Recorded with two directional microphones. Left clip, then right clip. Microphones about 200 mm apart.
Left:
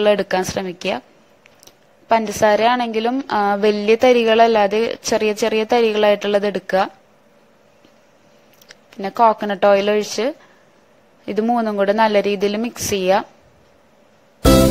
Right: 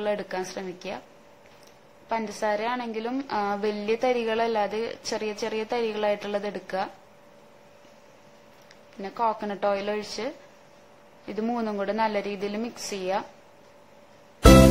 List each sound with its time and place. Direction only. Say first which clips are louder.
0.0 s speech: left 13 dB; 35° left (ahead or behind)
2.0 s speech: left 13 dB; 35° left (ahead or behind)
8.6 s speech: left 11 dB; 35° left (ahead or behind)
14.4 s music: left 2 dB; centre (ahead or behind)